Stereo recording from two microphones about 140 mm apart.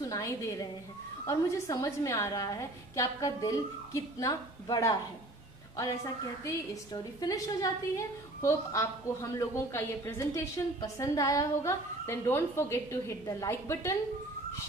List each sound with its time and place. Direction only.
0.0 s a woman's voice: 25° left (ahead or behind)
6.4 s a woman's voice: 25° left (ahead or behind)